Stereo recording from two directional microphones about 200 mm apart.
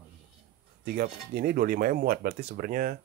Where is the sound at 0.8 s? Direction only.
50° right (ahead or behind).